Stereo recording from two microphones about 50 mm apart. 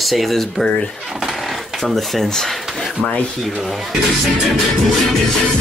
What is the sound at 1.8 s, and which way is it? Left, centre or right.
Speech, centre.